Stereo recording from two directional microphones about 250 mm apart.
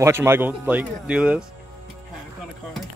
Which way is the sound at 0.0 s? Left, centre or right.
Centre.